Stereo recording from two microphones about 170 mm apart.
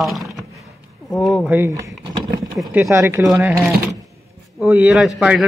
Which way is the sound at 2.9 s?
15° right (ahead or behind).